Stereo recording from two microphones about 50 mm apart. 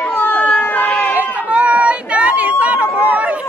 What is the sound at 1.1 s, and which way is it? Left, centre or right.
Chatter, right.